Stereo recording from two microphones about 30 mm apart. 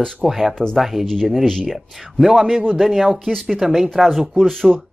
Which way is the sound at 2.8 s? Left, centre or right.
Centre.